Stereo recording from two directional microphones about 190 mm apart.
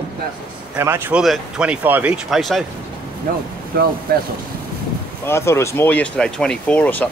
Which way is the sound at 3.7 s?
55° right (ahead or behind).